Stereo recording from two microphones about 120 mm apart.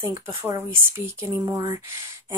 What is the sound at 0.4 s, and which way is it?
A woman's voice, 20° right (ahead or behind).